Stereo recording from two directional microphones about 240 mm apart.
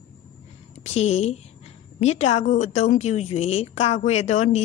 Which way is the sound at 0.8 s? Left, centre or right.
Left.